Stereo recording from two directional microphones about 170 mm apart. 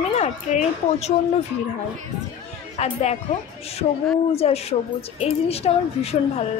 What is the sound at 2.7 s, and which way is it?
Speech, 40° left (ahead or behind).